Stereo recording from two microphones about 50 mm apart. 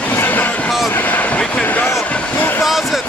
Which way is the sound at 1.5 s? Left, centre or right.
Left.